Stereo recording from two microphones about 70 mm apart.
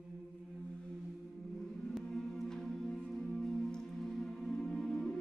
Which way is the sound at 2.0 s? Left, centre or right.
Centre.